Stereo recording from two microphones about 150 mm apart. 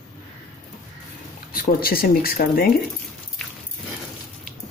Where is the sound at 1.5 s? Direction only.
75° left (ahead or behind).